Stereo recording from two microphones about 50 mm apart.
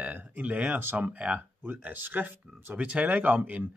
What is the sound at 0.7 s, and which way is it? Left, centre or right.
Speech, right.